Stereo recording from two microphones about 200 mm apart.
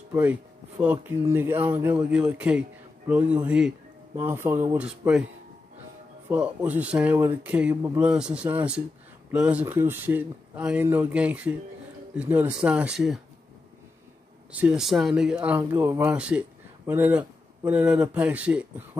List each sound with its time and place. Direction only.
0.1 s speech: 10° right (ahead or behind)
6.2 s speech: 5° right (ahead or behind)
8.1 s speech: 5° right (ahead or behind)
14.5 s speech: 5° right (ahead or behind)